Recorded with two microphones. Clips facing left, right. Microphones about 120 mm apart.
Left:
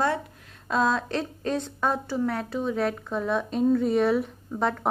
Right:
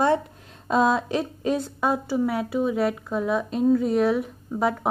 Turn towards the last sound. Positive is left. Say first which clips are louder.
# right 3 dB
turn(degrees=-5)  # may be behind; listen again after turning